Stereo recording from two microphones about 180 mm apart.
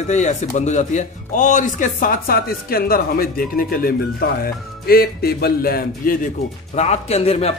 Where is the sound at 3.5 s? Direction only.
55° left (ahead or behind).